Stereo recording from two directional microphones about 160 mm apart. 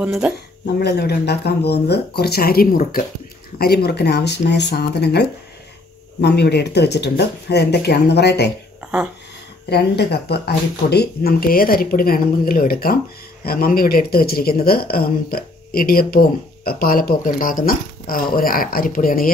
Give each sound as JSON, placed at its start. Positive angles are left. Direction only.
{"t": 0.0, "sound": "speech", "side_deg": -5}
{"t": 0.7, "sound": "speech", "side_deg": 90}
{"t": 6.2, "sound": "speech", "side_deg": 90}
{"t": 9.7, "sound": "speech", "side_deg": 90}